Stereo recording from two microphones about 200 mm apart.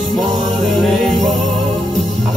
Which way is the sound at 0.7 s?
Centre (ahead or behind).